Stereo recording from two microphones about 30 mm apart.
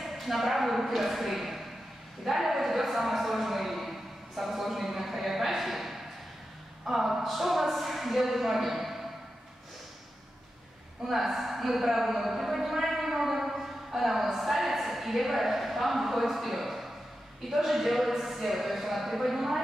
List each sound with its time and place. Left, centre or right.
0.0 s a woman's voice: centre
11.1 s a woman's voice: centre